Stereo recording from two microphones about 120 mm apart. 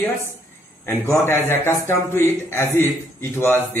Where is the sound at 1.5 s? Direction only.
20° left (ahead or behind).